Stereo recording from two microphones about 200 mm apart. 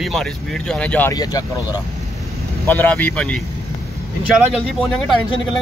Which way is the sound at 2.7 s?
10° left (ahead or behind).